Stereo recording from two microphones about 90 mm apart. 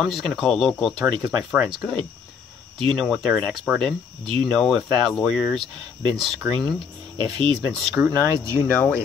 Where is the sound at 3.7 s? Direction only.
15° right (ahead or behind).